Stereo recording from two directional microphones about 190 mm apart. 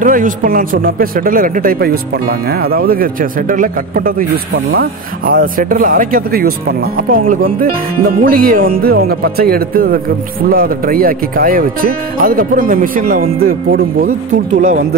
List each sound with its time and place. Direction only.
0.0 s speech: 45° right (ahead or behind)